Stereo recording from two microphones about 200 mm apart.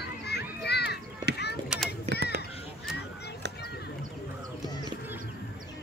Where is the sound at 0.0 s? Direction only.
55° left (ahead or behind).